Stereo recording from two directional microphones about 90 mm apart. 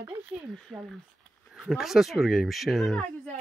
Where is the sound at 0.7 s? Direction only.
5° right (ahead or behind).